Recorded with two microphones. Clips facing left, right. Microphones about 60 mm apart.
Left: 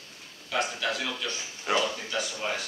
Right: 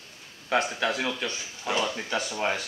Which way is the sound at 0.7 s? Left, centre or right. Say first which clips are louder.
Right 3 dB; right.